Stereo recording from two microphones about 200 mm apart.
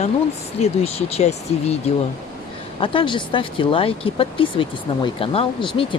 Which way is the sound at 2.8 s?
25° left (ahead or behind).